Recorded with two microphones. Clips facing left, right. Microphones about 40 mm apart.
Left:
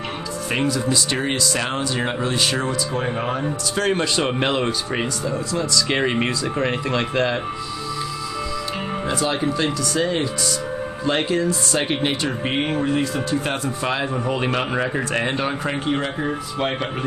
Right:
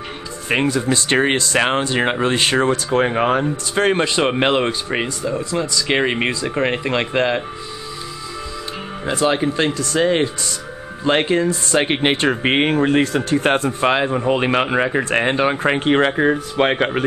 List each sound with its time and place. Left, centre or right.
0.5 s speech: right
3.7 s speech: right
9.1 s speech: right
9.8 s speech: right